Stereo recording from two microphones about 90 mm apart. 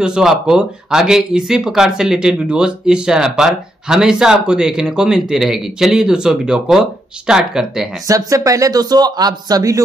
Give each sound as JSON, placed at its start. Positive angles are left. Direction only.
{"t": 0.0, "sound": "speech", "side_deg": -5}
{"t": 8.1, "sound": "speech", "side_deg": -40}